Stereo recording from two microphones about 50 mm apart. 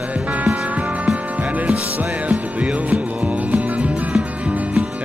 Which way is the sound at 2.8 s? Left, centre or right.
Right.